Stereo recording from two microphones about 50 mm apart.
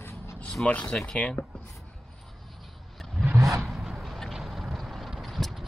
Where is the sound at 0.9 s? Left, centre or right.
Centre.